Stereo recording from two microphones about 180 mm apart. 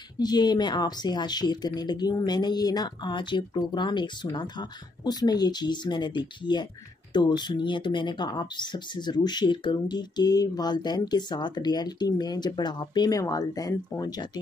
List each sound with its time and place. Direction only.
0.2 s a woman's voice: 20° left (ahead or behind)